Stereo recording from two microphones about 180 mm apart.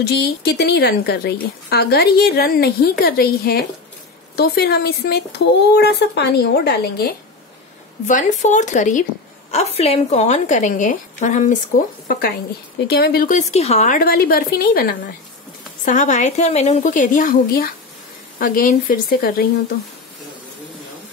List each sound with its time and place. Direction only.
0.0 s a woman's voice: 65° left (ahead or behind)
8.1 s speech: 45° left (ahead or behind)
12.1 s a woman's voice: 55° left (ahead or behind)
15.8 s a woman's voice: 45° left (ahead or behind)